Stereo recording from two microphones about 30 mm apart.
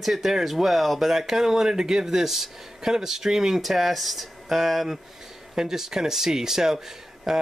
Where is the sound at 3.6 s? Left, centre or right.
Centre.